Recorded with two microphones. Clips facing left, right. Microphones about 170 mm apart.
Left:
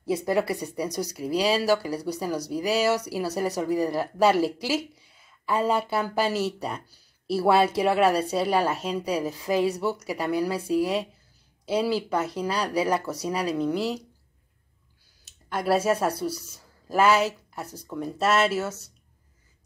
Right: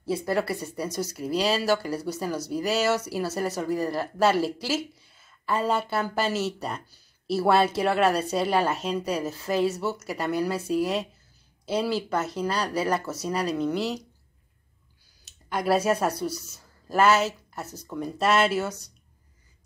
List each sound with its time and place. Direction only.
0.0 s speech: 20° left (ahead or behind)
15.2 s speech: 5° left (ahead or behind)